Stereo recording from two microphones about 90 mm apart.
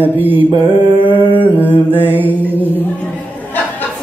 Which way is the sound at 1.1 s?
20° right (ahead or behind).